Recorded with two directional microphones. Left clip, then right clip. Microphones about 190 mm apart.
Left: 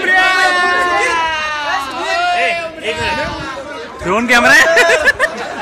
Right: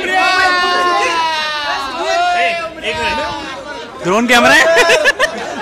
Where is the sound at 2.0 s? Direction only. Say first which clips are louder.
Right 2 dB; 50° right (ahead or behind).